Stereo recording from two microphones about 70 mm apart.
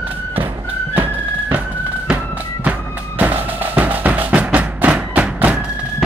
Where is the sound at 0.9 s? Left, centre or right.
Right.